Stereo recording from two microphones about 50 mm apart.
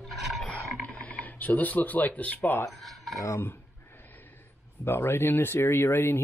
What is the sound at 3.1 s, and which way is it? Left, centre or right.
Speech, left.